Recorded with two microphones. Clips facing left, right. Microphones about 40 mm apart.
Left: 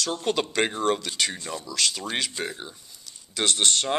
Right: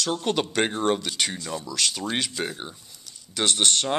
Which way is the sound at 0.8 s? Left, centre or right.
Centre.